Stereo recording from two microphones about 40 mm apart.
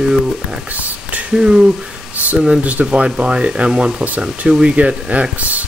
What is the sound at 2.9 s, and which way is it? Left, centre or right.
Speech, right.